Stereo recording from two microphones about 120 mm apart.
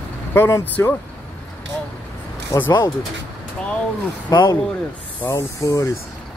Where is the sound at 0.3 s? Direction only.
20° left (ahead or behind).